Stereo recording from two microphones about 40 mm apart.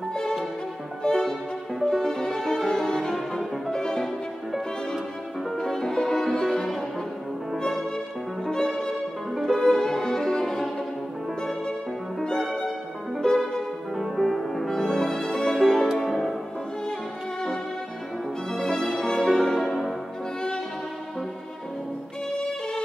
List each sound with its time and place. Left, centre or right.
0.1 s music: centre
3.7 s music: centre
5.6 s music: centre
8.5 s violin: centre
9.4 s music: centre
12.4 s violin: centre
13.9 s music: centre
16.0 s music: centre
18.5 s music: centre